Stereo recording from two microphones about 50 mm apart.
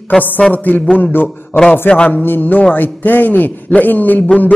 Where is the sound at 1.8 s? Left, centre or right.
Left.